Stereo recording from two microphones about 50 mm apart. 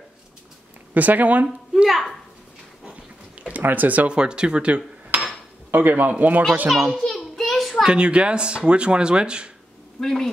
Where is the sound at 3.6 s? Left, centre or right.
Right.